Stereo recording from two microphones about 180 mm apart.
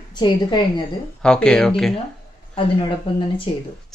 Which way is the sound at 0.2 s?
25° left (ahead or behind).